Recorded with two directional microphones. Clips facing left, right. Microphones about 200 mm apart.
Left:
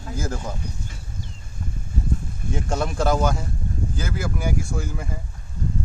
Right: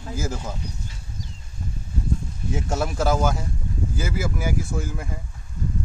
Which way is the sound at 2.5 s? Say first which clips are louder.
Even; 5° right (ahead or behind).